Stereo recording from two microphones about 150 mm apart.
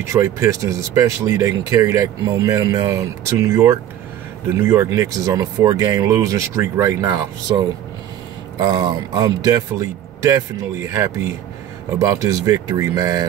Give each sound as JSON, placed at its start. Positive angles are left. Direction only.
{"t": 0.1, "sound": "speech", "side_deg": -20}